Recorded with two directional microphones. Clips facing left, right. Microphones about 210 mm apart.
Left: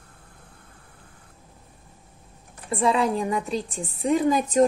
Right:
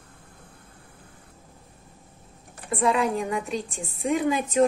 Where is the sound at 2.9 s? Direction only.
35° left (ahead or behind).